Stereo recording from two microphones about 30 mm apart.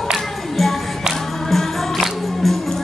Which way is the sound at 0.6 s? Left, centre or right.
Centre.